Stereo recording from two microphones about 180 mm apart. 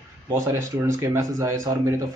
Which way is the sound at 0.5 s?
15° right (ahead or behind).